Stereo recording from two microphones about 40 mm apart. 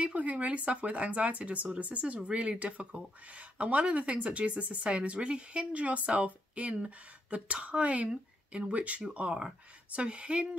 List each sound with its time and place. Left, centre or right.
0.0 s speech: right